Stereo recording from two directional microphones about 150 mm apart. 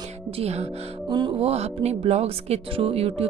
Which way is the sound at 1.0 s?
30° right (ahead or behind).